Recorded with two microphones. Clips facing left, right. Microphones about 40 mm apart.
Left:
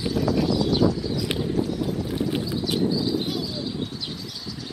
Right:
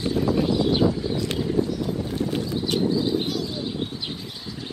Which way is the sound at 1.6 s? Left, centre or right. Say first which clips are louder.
Right 3 dB; centre.